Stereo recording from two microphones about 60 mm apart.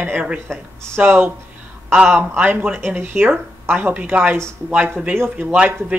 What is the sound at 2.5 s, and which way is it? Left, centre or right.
Speech, right.